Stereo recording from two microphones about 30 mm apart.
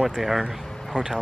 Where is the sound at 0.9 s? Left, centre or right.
Right.